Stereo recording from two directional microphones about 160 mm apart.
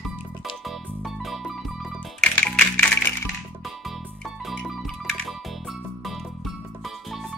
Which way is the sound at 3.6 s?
Centre (ahead or behind).